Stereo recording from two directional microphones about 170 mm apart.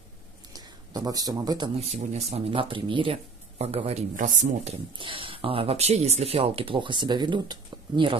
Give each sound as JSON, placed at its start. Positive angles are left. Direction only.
{"t": 0.5, "sound": "a sound", "side_deg": -20}
{"t": 1.8, "sound": "speech", "side_deg": -40}
{"t": 4.9, "sound": "speech", "side_deg": -30}